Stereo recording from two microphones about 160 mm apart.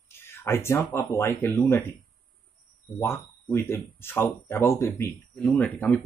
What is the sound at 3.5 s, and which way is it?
Speech, 15° left (ahead or behind).